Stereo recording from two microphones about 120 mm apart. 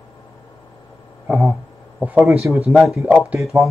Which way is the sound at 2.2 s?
Centre (ahead or behind).